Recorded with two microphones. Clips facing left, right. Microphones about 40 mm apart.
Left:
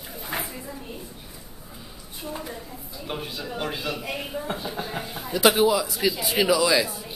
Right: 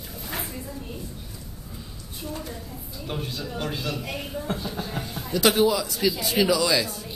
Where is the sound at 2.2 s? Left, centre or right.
Centre.